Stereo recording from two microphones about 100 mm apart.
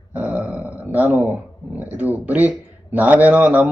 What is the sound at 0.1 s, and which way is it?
Grunt, 15° right (ahead or behind).